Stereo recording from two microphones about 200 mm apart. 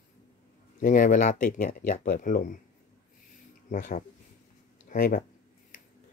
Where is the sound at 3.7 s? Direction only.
40° left (ahead or behind).